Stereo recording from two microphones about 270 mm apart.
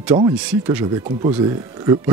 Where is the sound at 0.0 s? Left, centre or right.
Centre.